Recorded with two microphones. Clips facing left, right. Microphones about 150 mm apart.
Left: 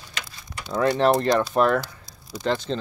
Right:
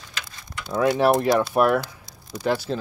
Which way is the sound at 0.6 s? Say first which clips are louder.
Right 1 dB; 5° right (ahead or behind).